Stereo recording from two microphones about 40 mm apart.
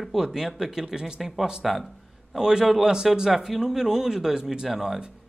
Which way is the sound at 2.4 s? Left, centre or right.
Centre.